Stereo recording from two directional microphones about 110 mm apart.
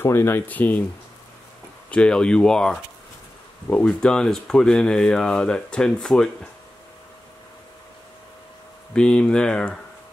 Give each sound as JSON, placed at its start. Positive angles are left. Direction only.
{"t": 0.0, "sound": "speech", "side_deg": 20}
{"t": 1.9, "sound": "speech", "side_deg": 10}
{"t": 8.9, "sound": "speech", "side_deg": 10}